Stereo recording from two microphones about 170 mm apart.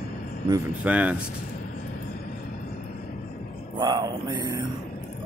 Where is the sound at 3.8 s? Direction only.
25° right (ahead or behind).